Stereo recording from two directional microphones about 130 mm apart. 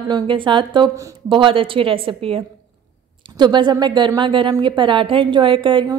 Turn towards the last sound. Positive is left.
turn(degrees=-40)  # may be behind; listen again after turning